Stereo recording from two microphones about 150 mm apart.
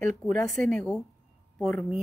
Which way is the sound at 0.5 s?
5° left (ahead or behind).